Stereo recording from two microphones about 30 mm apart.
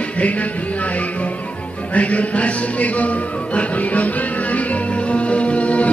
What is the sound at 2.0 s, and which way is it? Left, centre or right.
Music, left.